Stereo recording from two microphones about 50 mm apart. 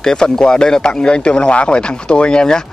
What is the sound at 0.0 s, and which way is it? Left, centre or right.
Speech, centre.